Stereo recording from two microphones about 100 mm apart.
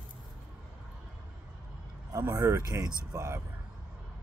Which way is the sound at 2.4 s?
30° right (ahead or behind).